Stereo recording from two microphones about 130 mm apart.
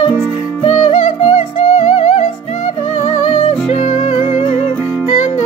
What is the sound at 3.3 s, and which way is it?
Music, 45° left (ahead or behind).